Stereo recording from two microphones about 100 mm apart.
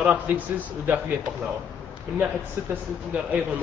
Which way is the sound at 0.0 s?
15° right (ahead or behind).